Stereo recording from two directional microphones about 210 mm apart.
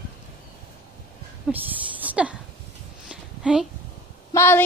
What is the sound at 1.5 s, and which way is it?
Speech, 5° right (ahead or behind).